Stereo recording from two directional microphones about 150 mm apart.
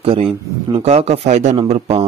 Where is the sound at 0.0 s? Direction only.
40° right (ahead or behind).